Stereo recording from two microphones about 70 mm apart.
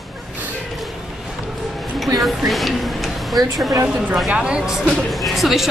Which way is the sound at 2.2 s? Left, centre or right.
Centre.